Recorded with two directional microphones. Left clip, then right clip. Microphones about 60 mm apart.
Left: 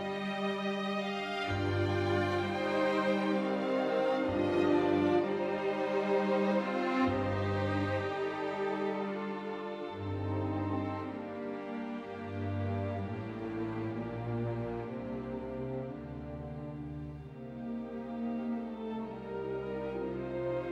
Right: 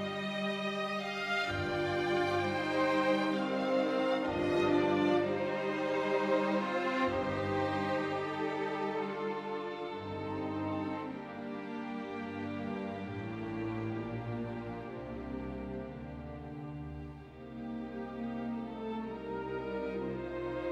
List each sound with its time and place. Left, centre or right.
1.0 s music: centre